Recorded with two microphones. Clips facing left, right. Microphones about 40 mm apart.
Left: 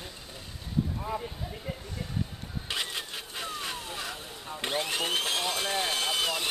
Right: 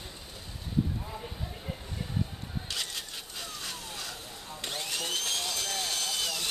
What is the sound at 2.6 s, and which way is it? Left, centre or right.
Vehicle, left.